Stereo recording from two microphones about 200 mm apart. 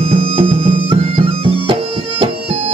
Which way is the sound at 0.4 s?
25° right (ahead or behind).